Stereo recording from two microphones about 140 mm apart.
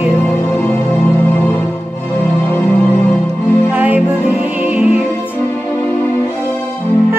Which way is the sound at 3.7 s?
10° right (ahead or behind).